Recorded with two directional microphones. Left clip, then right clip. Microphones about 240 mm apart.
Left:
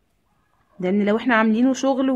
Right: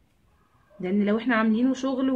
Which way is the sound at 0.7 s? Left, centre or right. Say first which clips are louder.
Left 5 dB; left.